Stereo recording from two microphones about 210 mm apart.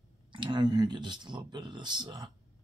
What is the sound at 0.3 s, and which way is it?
Speech, 20° right (ahead or behind).